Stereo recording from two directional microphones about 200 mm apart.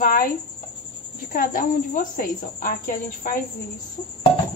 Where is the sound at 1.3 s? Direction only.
45° left (ahead or behind).